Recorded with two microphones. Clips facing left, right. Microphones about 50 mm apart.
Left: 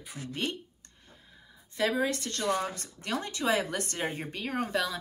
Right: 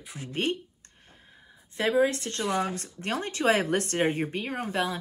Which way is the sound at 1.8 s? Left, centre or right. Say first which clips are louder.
Right 4 dB; right.